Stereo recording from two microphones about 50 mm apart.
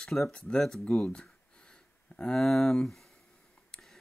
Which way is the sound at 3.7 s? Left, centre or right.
Centre.